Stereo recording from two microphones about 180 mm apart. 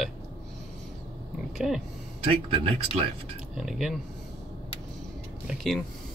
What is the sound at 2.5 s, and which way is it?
Speech, 35° right (ahead or behind).